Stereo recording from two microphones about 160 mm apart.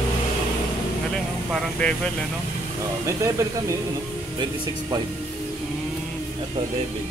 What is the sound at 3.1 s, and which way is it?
Speech, 20° right (ahead or behind).